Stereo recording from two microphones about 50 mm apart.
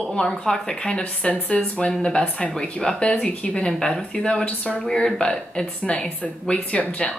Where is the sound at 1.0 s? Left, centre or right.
Left.